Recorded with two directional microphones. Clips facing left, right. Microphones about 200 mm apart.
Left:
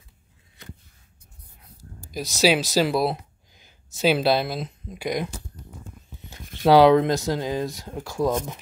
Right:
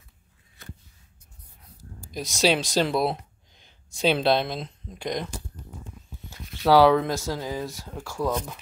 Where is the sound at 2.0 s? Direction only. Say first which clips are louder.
Left 2 dB; centre (ahead or behind).